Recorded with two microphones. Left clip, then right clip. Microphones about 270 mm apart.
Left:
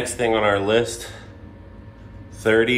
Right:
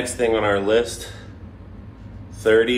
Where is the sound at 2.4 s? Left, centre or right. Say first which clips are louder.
Right 2 dB; left.